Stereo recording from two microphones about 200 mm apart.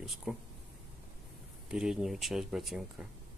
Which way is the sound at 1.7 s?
Centre (ahead or behind).